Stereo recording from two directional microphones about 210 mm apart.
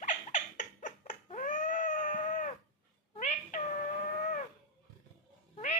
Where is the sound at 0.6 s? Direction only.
35° left (ahead or behind).